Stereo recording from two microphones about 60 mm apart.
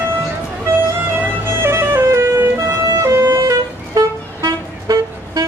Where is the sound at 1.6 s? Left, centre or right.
Right.